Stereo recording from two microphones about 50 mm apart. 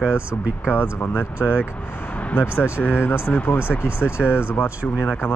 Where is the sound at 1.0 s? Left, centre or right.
Left.